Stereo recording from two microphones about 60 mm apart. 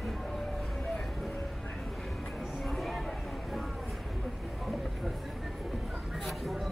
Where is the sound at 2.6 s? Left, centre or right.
Centre.